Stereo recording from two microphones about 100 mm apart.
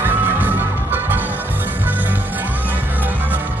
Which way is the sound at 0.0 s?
20° right (ahead or behind).